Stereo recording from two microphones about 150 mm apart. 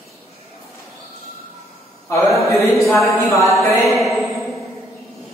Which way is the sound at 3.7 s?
20° left (ahead or behind).